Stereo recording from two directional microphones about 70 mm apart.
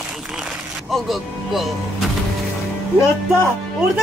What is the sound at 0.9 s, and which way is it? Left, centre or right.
Speech, centre.